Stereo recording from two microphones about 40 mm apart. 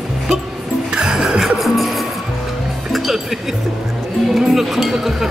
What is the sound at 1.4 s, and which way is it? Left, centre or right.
Music, centre.